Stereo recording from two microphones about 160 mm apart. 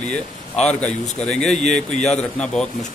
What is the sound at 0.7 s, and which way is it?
Speech, 5° left (ahead or behind).